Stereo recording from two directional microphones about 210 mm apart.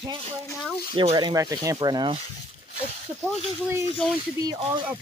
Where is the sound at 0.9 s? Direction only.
20° right (ahead or behind).